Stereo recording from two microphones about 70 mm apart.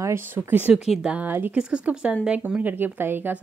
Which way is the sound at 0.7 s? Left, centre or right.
Centre.